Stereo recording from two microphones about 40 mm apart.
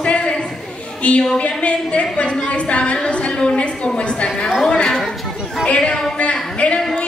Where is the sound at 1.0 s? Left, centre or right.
Left.